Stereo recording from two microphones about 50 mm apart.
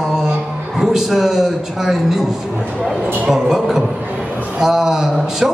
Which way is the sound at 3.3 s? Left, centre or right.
Centre.